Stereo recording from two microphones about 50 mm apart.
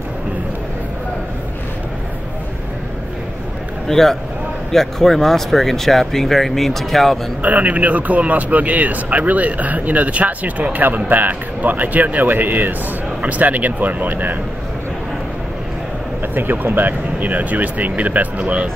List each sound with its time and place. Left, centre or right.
3.9 s speech: centre
7.4 s speech: right
16.2 s speech: right